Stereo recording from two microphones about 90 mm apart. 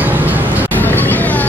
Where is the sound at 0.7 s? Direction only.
20° left (ahead or behind).